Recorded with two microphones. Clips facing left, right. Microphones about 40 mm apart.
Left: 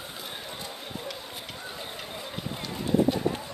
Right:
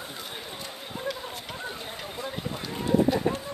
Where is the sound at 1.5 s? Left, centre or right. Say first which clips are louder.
Right 4 dB; right.